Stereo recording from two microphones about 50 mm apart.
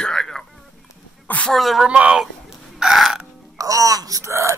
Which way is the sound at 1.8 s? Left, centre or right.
Right.